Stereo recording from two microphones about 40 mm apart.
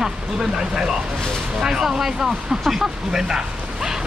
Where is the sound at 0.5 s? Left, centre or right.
Centre.